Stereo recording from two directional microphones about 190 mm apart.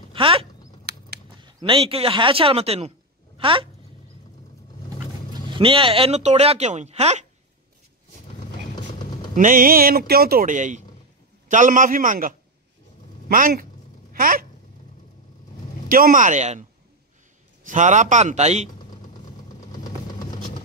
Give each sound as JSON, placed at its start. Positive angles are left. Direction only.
{"t": 0.1, "sound": "speech", "side_deg": -30}
{"t": 0.9, "sound": "a sound", "side_deg": -60}
{"t": 1.4, "sound": "speech", "side_deg": -25}
{"t": 5.3, "sound": "speech", "side_deg": -25}
{"t": 9.3, "sound": "speech", "side_deg": -45}
{"t": 14.1, "sound": "a sound", "side_deg": -50}
{"t": 15.9, "sound": "speech", "side_deg": -45}
{"t": 17.6, "sound": "speech", "side_deg": -40}
{"t": 19.8, "sound": "vehicle", "side_deg": 20}